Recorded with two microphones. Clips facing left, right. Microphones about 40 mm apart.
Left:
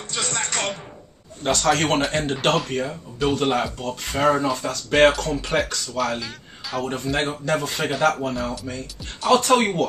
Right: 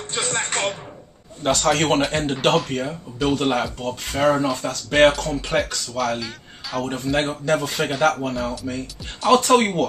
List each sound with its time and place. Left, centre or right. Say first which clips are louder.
0.1 s speech: right 2 dB; right
1.4 s speech: right 1 dB; centre